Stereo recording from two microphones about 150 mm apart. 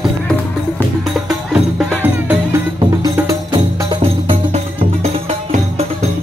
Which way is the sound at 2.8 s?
25° right (ahead or behind).